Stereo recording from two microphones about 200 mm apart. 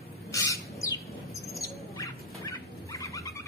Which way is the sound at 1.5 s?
15° left (ahead or behind).